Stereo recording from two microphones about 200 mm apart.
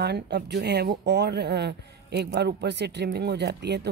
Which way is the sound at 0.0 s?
55° right (ahead or behind).